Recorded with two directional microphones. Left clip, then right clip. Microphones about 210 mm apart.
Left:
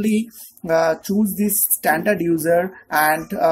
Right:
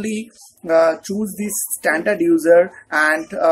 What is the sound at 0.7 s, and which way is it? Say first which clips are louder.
Speech: right 3 dB; 35° left (ahead or behind).